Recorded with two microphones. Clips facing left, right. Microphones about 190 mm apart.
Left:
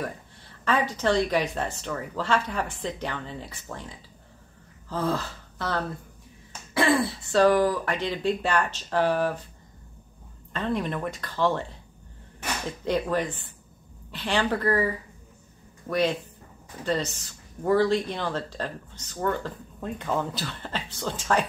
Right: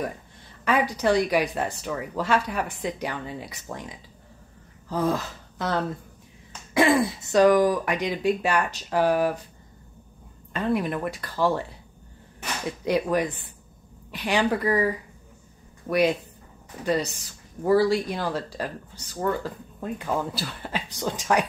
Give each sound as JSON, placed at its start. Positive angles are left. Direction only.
{"t": 0.7, "sound": "speech", "side_deg": -15}
{"t": 10.5, "sound": "speech", "side_deg": -10}
{"t": 12.6, "sound": "speech", "side_deg": -10}